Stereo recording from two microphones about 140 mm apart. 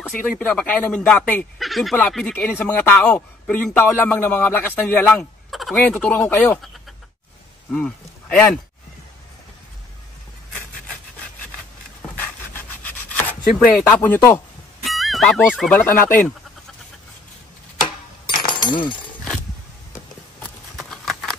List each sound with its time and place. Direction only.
0.0 s a man's voice: 10° left (ahead or behind)
7.7 s speech: 5° left (ahead or behind)
12.2 s rub: 15° left (ahead or behind)
13.7 s a man's voice: 10° left (ahead or behind)
14.8 s music: centre (ahead or behind)
15.8 s a man's voice: 15° left (ahead or behind)
18.2 s chink: 30° left (ahead or behind)
20.3 s horse: centre (ahead or behind)